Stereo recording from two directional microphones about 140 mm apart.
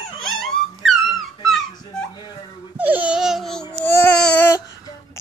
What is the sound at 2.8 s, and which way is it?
Baby cry, 10° right (ahead or behind).